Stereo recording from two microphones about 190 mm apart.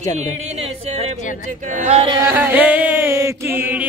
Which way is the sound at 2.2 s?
10° right (ahead or behind).